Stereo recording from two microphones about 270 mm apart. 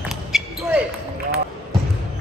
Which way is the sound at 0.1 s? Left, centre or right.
Centre.